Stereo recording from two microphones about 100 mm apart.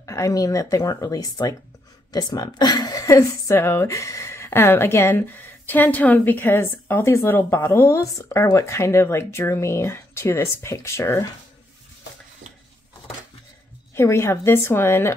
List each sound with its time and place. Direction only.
0.0 s a woman's voice: 30° left (ahead or behind)
13.9 s a woman's voice: 25° left (ahead or behind)